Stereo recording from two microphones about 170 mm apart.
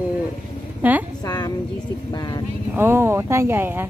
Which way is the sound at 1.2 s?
25° left (ahead or behind).